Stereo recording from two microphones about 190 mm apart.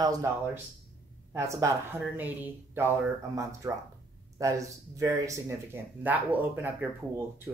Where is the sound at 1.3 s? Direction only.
15° right (ahead or behind).